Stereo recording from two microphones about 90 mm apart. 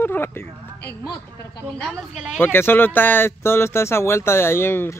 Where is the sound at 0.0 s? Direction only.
25° left (ahead or behind).